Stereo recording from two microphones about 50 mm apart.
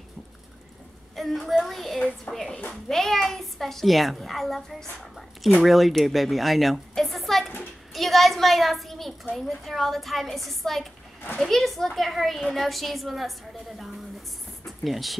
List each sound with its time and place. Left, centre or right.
1.1 s a woman's voice: centre
2.3 s a woman's voice: left
2.7 s a child's voice: centre
14.6 s a sound: centre